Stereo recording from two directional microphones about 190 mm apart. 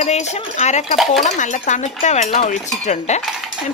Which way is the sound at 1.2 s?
40° left (ahead or behind).